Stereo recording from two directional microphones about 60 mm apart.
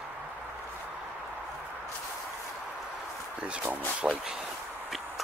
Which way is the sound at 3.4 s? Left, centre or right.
Right.